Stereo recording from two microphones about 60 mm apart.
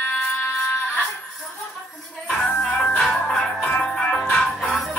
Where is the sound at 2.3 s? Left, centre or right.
Centre.